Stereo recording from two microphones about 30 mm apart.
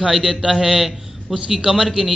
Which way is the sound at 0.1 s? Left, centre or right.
Centre.